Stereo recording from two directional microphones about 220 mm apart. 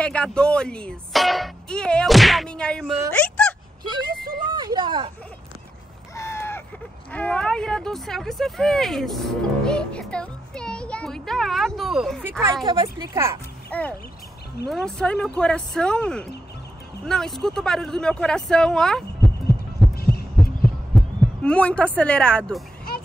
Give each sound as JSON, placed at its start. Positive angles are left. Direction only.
{"t": 0.0, "sound": "speech", "side_deg": 5}
{"t": 3.2, "sound": "a sound", "side_deg": 5}
{"t": 3.8, "sound": "speech", "side_deg": -20}
{"t": 6.1, "sound": "a sound", "side_deg": 10}
{"t": 7.1, "sound": "speech", "side_deg": 5}
{"t": 13.7, "sound": "speech", "side_deg": 5}
{"t": 20.0, "sound": "heart sounds", "side_deg": 45}
{"t": 20.6, "sound": "heart sounds", "side_deg": 5}